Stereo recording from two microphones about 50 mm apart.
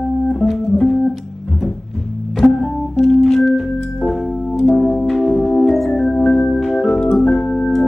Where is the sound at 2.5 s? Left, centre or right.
Centre.